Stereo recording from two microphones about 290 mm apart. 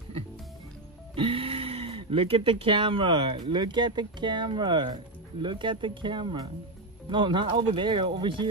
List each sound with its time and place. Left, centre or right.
1.1 s speech: centre